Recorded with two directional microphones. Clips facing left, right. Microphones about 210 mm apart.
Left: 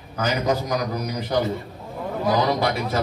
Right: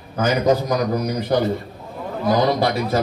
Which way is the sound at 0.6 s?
55° right (ahead or behind).